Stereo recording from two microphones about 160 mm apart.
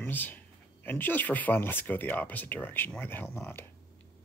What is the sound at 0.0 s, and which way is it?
Speech, 10° left (ahead or behind).